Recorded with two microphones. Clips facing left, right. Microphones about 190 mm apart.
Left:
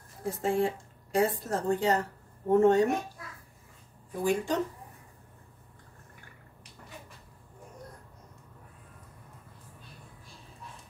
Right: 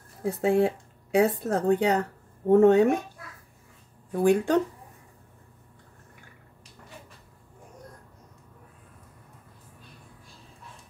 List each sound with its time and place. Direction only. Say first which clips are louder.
0.2 s speech: right 5 dB; 65° right (ahead or behind)
4.1 s speech: right 7 dB; 60° right (ahead or behind)